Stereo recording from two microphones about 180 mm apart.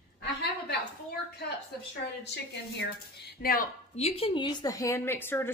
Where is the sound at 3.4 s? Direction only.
55° left (ahead or behind).